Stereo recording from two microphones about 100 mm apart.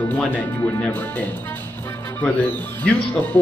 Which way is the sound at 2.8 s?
15° left (ahead or behind).